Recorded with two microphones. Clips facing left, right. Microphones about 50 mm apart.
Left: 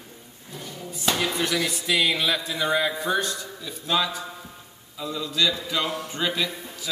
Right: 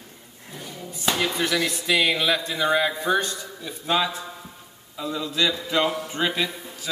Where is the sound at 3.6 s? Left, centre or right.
Right.